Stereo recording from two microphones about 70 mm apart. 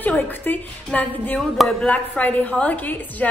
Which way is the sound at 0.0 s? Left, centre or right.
Left.